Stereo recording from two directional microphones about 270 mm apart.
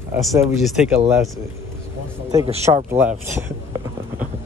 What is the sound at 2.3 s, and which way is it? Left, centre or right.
Speech, right.